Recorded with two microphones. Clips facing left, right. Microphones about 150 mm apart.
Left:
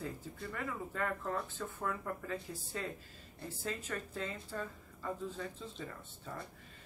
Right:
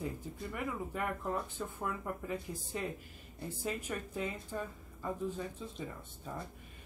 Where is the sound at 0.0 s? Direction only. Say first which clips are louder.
Right 2 dB; 15° right (ahead or behind).